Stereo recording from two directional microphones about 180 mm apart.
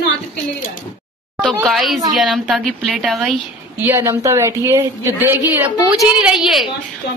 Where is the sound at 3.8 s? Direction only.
15° right (ahead or behind).